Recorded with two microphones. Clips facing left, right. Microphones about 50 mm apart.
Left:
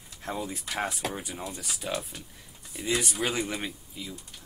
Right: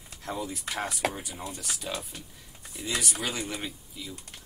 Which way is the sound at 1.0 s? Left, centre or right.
Right.